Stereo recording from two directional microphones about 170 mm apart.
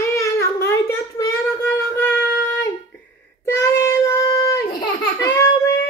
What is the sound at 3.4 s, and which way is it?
Child singing, 15° left (ahead or behind).